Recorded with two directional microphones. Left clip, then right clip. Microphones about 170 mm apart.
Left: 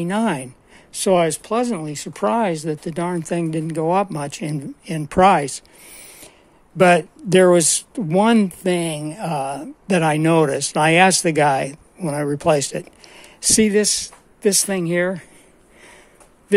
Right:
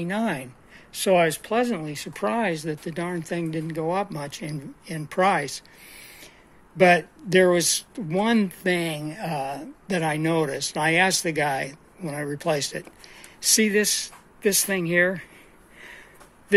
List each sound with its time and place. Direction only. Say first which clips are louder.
0.0 s speech: left 5 dB; 40° left (ahead or behind)